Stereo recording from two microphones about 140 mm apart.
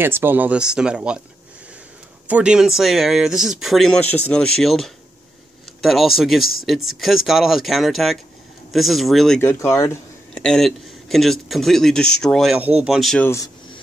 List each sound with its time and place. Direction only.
0.0 s speech: 15° right (ahead or behind)
2.2 s speech: 10° right (ahead or behind)
9.4 s speech: 15° left (ahead or behind)
10.3 s speech: 5° left (ahead or behind)
12.5 s speech: 10° right (ahead or behind)
13.2 s speech: 20° left (ahead or behind)